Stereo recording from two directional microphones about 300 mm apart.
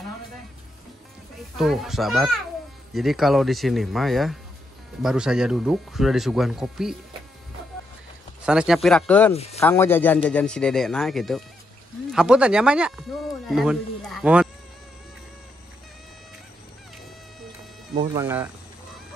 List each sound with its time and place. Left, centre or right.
1.6 s speech: centre
8.5 s speech: centre
9.3 s speech: left
9.6 s speech: centre
18.0 s speech: centre